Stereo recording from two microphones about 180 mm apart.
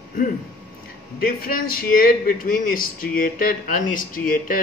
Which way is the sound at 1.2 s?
55° left (ahead or behind).